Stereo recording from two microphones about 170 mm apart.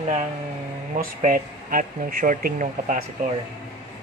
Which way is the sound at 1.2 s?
55° right (ahead or behind).